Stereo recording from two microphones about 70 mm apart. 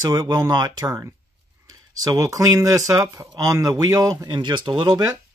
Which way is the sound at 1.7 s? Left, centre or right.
Right.